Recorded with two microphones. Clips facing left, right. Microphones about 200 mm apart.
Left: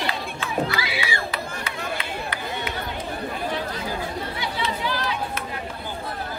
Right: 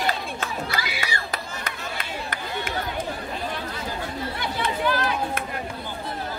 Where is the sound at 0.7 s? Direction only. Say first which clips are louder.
Left 2 dB; 45° right (ahead or behind).